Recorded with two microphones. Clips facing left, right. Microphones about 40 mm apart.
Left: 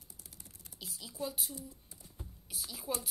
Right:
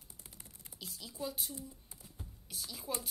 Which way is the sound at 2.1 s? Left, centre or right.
Centre.